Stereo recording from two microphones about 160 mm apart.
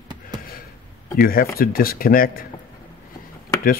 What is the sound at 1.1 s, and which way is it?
Speech, 65° left (ahead or behind).